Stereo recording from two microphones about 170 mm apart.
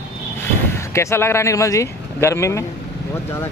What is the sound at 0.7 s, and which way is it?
Speech, 15° left (ahead or behind).